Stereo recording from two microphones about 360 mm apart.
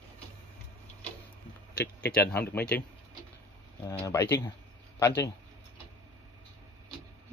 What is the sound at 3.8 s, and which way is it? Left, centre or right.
Speech, centre.